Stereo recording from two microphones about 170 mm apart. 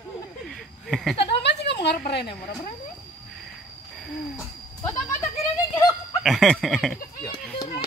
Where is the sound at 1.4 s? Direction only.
90° left.